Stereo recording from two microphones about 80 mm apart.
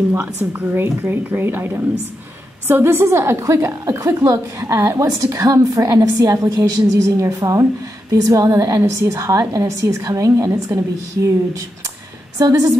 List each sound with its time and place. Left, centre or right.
0.1 s a woman's voice: right
12.4 s a woman's voice: right